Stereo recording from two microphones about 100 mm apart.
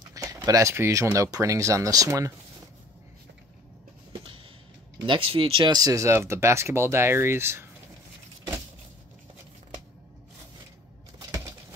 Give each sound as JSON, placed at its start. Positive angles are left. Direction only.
{"t": 0.1, "sound": "speech", "side_deg": -35}
{"t": 4.1, "sound": "a sound", "side_deg": -60}
{"t": 5.0, "sound": "speech", "side_deg": -60}
{"t": 5.6, "sound": "speech", "side_deg": -40}